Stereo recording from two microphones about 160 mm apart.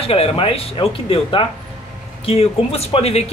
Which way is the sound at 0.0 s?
40° left (ahead or behind).